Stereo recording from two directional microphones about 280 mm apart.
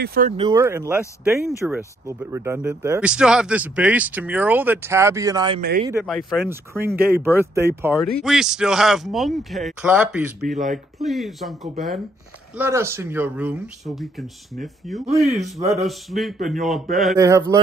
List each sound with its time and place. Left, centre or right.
0.0 s speech: right
0.3 s a man's voice: centre
5.6 s speech: right
5.9 s a man's voice: centre
17.2 s a man's voice: centre